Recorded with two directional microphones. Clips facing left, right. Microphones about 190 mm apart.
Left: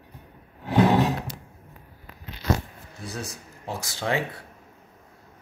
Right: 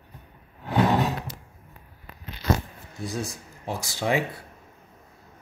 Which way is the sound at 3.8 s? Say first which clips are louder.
Right 2 dB; 10° right (ahead or behind).